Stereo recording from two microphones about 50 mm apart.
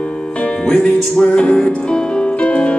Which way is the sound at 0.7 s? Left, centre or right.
Centre.